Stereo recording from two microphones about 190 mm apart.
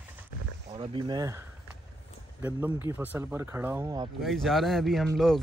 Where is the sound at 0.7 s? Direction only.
25° right (ahead or behind).